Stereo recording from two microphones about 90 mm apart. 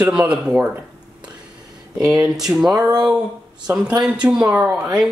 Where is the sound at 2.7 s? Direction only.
45° right (ahead or behind).